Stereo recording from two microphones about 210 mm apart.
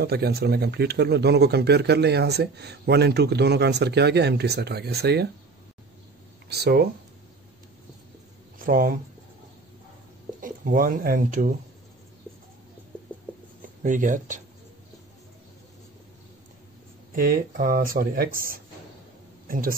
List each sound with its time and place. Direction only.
0.0 s speech: 50° right (ahead or behind)
6.5 s speech: 50° right (ahead or behind)
8.5 s speech: 45° right (ahead or behind)
10.4 s speech: 40° right (ahead or behind)
13.8 s speech: 40° right (ahead or behind)
17.1 s speech: 45° right (ahead or behind)
19.4 s a sound: 40° right (ahead or behind)